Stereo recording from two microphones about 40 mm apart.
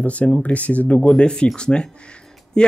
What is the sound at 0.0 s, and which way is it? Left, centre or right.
Speech, left.